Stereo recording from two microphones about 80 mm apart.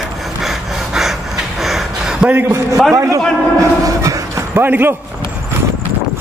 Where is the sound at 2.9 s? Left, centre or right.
Right.